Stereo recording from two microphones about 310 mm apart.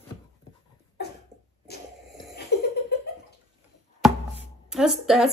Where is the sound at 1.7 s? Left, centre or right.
Left.